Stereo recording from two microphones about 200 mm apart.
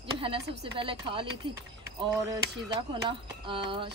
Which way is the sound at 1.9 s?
15° right (ahead or behind).